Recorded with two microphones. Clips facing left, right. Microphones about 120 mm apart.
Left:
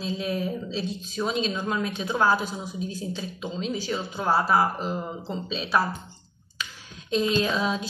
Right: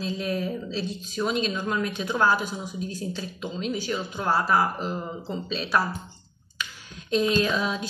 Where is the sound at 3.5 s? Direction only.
30° left (ahead or behind).